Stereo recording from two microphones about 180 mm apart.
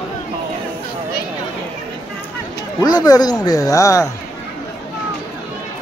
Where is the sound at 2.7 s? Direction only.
20° left (ahead or behind).